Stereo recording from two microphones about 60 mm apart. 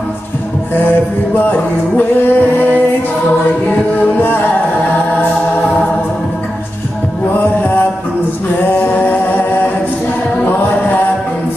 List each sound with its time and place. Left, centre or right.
2.0 s music: left
8.7 s singing: left